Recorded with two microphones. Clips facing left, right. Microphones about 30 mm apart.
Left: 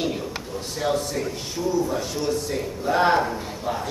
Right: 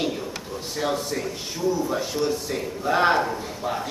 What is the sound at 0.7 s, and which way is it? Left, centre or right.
A woman's voice, centre.